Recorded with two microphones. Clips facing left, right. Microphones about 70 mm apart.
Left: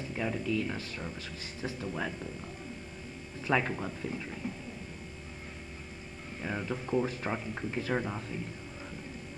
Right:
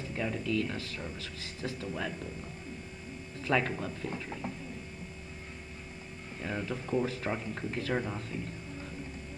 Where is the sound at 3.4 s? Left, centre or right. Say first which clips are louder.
Even; centre.